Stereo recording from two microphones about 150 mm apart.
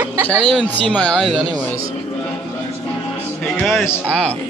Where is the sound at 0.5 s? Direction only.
5° left (ahead or behind).